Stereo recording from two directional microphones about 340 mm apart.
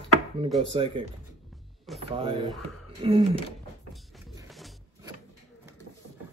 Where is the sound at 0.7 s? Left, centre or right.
Centre.